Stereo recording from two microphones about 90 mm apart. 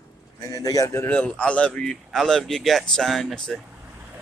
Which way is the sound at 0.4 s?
40° left (ahead or behind).